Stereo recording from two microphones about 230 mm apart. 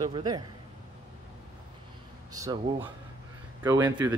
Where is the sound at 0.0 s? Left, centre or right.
Centre.